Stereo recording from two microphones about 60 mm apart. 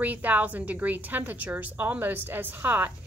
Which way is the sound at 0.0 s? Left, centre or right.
Right.